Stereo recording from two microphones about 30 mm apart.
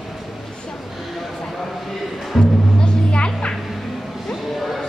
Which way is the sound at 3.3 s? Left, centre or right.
Left.